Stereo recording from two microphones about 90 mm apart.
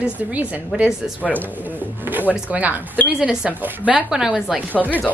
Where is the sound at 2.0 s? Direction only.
20° right (ahead or behind).